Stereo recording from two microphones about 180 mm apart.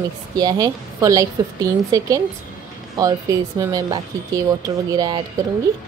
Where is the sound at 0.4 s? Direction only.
20° right (ahead or behind).